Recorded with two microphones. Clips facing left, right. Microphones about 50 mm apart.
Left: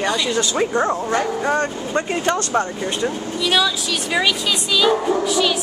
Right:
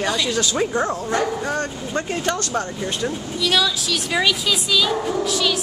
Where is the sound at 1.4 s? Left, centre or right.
Left.